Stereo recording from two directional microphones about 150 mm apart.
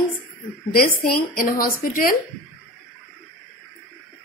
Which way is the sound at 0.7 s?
75° left (ahead or behind).